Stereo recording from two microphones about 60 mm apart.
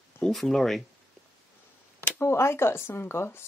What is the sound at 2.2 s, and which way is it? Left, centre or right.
Speech, left.